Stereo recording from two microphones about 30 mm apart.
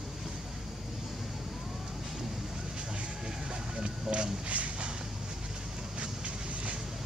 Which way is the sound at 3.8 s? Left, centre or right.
Right.